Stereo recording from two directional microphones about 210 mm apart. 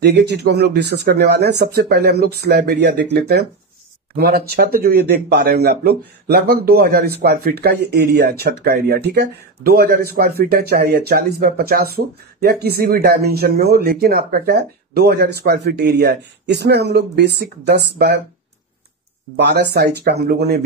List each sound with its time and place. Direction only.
0.0 s speech: 50° right (ahead or behind)
19.3 s speech: 50° right (ahead or behind)